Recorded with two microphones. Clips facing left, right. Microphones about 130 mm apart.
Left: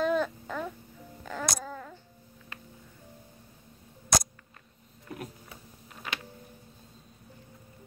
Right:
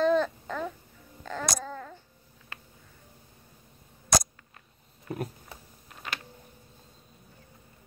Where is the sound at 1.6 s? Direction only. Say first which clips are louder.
Right 2 dB; 5° left (ahead or behind).